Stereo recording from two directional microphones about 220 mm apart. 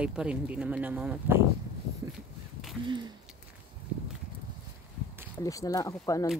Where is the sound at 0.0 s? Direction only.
5° right (ahead or behind).